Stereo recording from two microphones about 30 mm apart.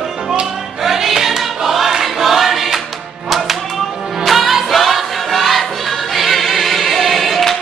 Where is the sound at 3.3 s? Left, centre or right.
Centre.